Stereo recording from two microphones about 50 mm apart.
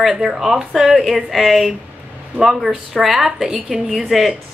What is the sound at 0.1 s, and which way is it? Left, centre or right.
A woman's voice, centre.